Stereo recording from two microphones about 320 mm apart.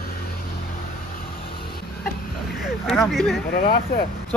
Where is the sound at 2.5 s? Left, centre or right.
Centre.